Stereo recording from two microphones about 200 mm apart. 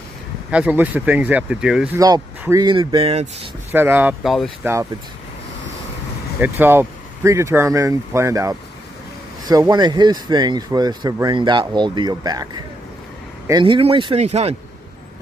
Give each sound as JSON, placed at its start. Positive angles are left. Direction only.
{"t": 0.5, "sound": "speech", "side_deg": -5}
{"t": 2.0, "sound": "speech", "side_deg": -20}
{"t": 3.7, "sound": "speech", "side_deg": -10}
{"t": 6.4, "sound": "speech", "side_deg": -10}